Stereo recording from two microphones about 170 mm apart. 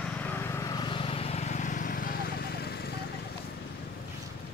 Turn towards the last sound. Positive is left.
turn(degrees=70)  # may be behind; listen again after turning